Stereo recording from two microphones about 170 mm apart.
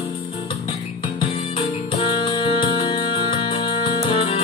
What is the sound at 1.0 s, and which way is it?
Music, 30° left (ahead or behind).